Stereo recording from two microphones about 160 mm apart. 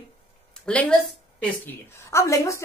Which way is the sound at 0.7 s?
5° left (ahead or behind).